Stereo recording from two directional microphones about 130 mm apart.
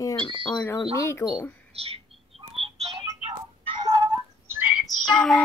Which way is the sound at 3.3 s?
30° right (ahead or behind).